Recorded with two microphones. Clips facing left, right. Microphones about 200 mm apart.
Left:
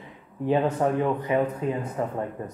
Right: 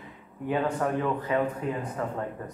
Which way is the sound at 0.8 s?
20° left (ahead or behind).